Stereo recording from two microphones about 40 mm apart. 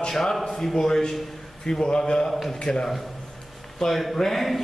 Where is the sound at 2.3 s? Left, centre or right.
Centre.